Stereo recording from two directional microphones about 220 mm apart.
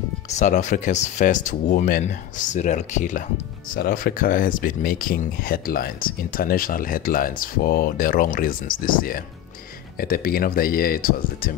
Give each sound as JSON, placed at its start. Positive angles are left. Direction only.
{"t": 0.3, "sound": "speech", "side_deg": 30}